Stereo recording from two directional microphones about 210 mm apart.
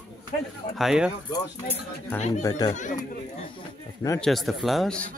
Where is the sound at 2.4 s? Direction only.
15° left (ahead or behind).